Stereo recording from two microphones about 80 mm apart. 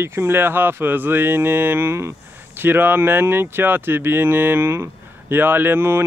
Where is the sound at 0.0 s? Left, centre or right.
Right.